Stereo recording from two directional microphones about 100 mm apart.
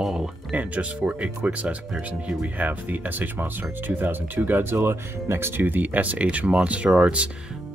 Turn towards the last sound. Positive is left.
turn(degrees=-10)  # may be behind; listen again after turning